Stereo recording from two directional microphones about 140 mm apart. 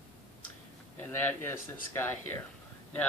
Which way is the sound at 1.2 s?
15° left (ahead or behind).